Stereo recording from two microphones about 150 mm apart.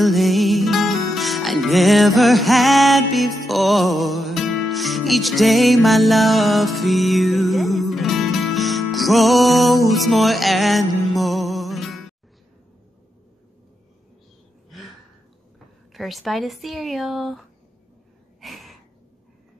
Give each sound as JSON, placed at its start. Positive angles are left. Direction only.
{"t": 0.0, "sound": "music", "side_deg": 0}
{"t": 14.7, "sound": "a sound", "side_deg": 0}
{"t": 15.9, "sound": "speech", "side_deg": 0}
{"t": 18.4, "sound": "gasp", "side_deg": 0}